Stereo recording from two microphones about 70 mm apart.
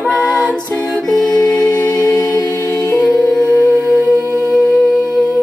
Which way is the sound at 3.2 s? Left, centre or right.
Centre.